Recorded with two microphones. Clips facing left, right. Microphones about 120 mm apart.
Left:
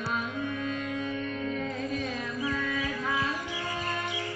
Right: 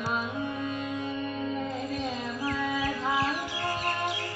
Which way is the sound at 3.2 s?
75° right (ahead or behind).